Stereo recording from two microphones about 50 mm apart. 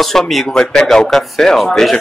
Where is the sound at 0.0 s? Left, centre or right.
Centre.